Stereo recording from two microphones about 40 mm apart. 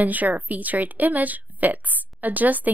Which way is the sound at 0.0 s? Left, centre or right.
Right.